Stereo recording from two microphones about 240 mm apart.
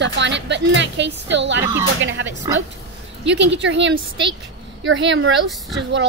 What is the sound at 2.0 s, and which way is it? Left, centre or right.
Speech, right.